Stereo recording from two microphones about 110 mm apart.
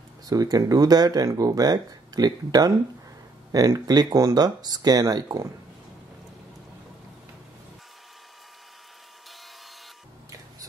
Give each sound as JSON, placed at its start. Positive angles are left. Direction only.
{"t": 0.3, "sound": "speech", "side_deg": -35}